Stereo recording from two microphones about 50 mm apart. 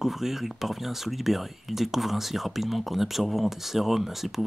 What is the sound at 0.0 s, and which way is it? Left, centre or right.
Speech, centre.